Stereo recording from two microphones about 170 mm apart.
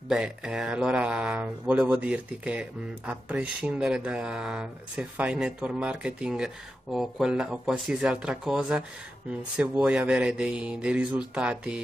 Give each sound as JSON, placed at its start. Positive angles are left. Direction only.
{"t": 0.1, "sound": "speech", "side_deg": -5}